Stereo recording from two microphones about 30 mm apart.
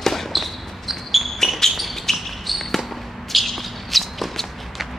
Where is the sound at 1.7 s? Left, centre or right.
Centre.